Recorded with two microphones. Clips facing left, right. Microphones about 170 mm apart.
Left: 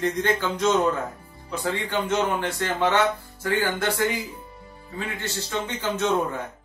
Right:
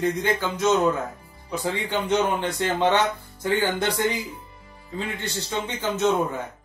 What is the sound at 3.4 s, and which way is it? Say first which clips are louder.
Speech: right 1 dB; 20° right (ahead or behind).